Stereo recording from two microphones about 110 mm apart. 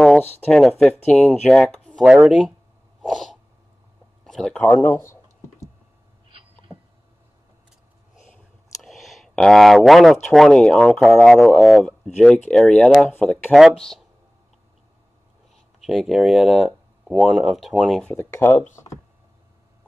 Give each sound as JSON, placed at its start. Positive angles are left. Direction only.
{"t": 0.2, "sound": "speech", "side_deg": 15}
{"t": 0.5, "sound": "speech", "side_deg": 5}
{"t": 1.7, "sound": "a sound", "side_deg": 10}
{"t": 2.0, "sound": "speech", "side_deg": -5}
{"t": 3.0, "sound": "sneeze", "side_deg": 0}
{"t": 4.2, "sound": "clicking", "side_deg": 5}
{"t": 8.8, "sound": "a sound", "side_deg": 0}
{"t": 10.2, "sound": "speech", "side_deg": 0}
{"t": 13.1, "sound": "speech", "side_deg": 15}
{"t": 13.5, "sound": "speech", "side_deg": 0}
{"t": 15.8, "sound": "speech", "side_deg": 0}
{"t": 18.0, "sound": "speech", "side_deg": 20}